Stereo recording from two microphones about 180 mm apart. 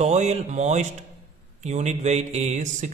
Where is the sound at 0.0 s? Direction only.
40° right (ahead or behind).